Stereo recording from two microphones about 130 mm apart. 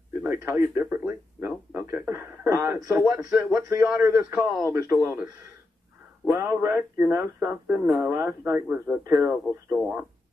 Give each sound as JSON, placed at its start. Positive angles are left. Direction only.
{"t": 0.2, "sound": "a man's voice", "side_deg": -20}